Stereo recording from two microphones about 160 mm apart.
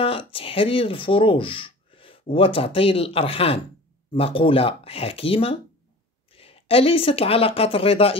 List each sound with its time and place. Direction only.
0.0 s speech: 35° left (ahead or behind)